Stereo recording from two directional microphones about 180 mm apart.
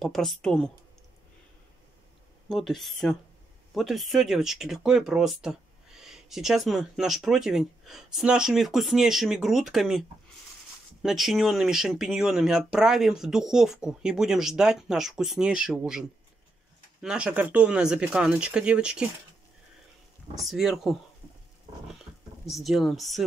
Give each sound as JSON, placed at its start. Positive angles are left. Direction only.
{"t": 0.0, "sound": "speech", "side_deg": 0}
{"t": 2.5, "sound": "speech", "side_deg": 0}
{"t": 20.3, "sound": "speech", "side_deg": 0}
{"t": 22.5, "sound": "speech", "side_deg": 0}